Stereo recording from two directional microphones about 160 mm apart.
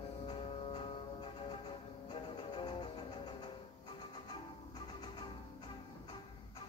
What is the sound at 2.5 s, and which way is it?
Music, 30° left (ahead or behind).